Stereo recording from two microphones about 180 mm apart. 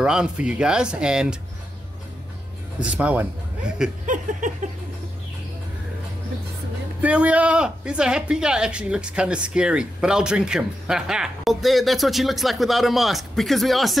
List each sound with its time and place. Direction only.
0.0 s speech: 5° right (ahead or behind)
2.8 s a man's voice: 5° right (ahead or behind)
4.0 s a sound: 45° right (ahead or behind)
7.0 s speech: 5° right (ahead or behind)